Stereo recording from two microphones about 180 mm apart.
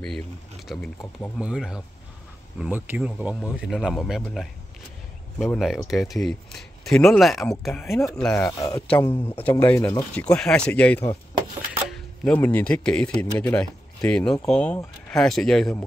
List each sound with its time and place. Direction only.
0.7 s speech: 5° left (ahead or behind)
7.8 s speech: 15° left (ahead or behind)
8.5 s speech: 20° left (ahead or behind); by 15.8 s centre (ahead or behind)